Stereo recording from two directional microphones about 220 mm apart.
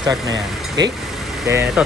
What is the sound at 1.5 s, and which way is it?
Speech, 10° right (ahead or behind).